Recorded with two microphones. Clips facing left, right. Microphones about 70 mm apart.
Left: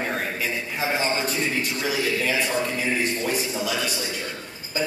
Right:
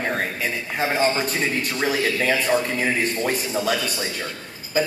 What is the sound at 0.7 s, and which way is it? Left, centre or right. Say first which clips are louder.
A man's voice: right 5 dB; right.